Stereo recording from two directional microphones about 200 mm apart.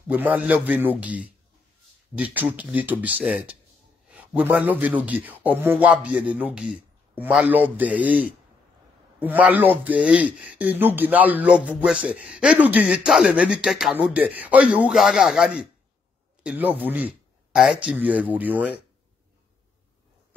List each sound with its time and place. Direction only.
0.1 s speech: 5° right (ahead or behind)